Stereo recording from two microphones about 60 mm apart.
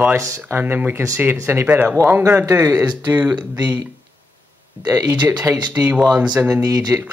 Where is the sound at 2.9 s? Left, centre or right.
Right.